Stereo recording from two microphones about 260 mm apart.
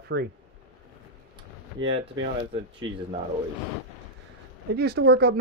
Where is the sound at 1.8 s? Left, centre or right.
Right.